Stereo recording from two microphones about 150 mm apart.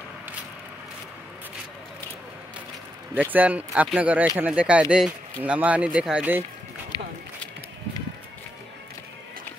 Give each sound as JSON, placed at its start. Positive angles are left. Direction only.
{"t": 3.2, "sound": "speech", "side_deg": -10}